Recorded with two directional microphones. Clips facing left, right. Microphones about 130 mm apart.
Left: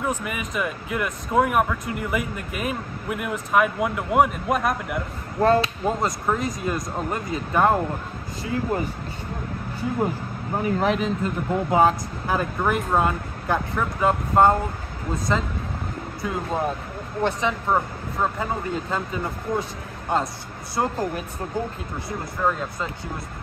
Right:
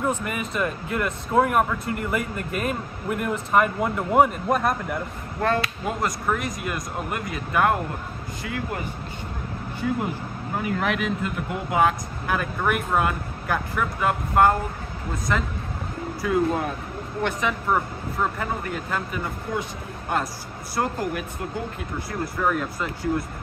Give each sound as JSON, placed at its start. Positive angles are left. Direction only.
{"t": 0.0, "sound": "speech", "side_deg": 5}
{"t": 5.4, "sound": "speech", "side_deg": 30}
{"t": 10.6, "sound": "speech", "side_deg": 30}